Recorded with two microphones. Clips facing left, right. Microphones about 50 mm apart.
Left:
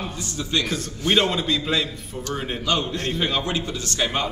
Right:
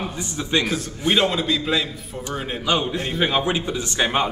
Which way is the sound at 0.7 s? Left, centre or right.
Centre.